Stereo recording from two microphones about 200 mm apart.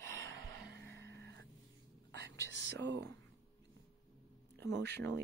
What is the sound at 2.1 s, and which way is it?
Whispering, 60° right (ahead or behind).